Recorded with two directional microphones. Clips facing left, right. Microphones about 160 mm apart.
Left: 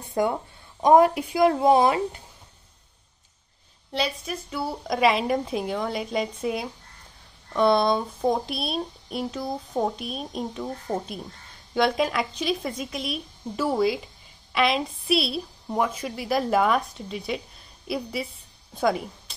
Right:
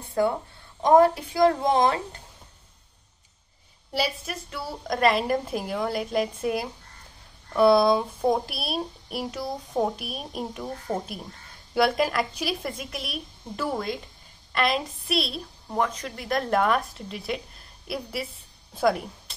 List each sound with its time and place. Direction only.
0.2 s speech: 20° left (ahead or behind)
3.9 s a woman's voice: 5° right (ahead or behind)